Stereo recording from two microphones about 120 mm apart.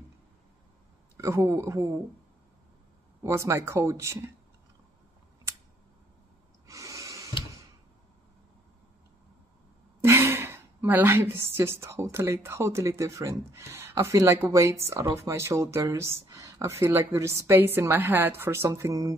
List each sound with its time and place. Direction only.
1.1 s a woman's voice: 25° right (ahead or behind)
3.3 s a woman's voice: 25° right (ahead or behind)
6.7 s a sound: 30° right (ahead or behind)
10.0 s a woman's voice: 20° right (ahead or behind)